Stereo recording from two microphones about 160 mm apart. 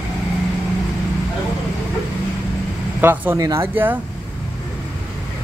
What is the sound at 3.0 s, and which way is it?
Speech, 15° right (ahead or behind).